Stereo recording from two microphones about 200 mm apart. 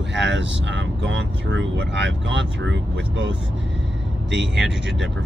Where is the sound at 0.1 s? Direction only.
65° right (ahead or behind).